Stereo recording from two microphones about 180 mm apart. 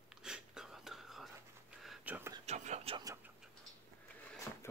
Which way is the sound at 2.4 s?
40° right (ahead or behind).